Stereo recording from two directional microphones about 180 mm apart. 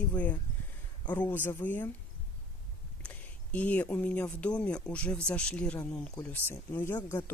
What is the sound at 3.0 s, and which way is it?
Speech, 10° left (ahead or behind).